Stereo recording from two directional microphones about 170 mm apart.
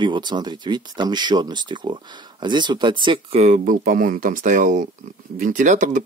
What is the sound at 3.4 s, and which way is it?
Speech, 50° right (ahead or behind).